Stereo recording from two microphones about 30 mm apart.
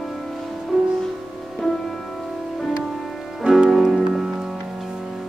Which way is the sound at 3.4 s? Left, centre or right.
Right.